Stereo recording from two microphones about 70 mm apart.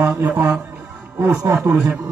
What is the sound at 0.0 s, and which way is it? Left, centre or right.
Speech, right.